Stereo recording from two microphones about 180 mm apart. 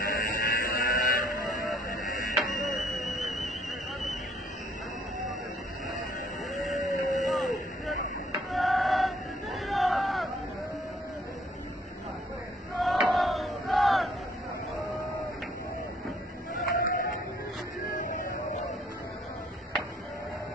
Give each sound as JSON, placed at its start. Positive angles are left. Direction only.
{"t": 0.0, "sound": "a sound", "side_deg": 50}
{"t": 2.6, "sound": "music", "side_deg": 0}
{"t": 6.5, "sound": "a sound", "side_deg": 0}
{"t": 8.5, "sound": "chant", "side_deg": 0}
{"t": 12.7, "sound": "battle cry", "side_deg": 0}
{"t": 16.7, "sound": "music", "side_deg": 55}